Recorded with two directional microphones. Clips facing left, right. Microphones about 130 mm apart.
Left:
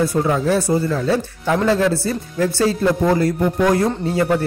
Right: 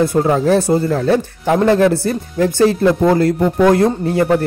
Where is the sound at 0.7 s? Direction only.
55° right (ahead or behind).